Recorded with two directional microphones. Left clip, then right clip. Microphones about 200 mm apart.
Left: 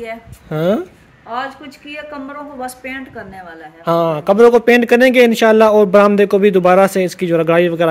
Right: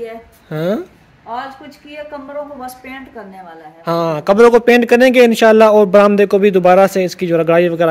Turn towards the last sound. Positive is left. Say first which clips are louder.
# right 1 dB
turn(degrees=5)  # may be behind; listen again after turning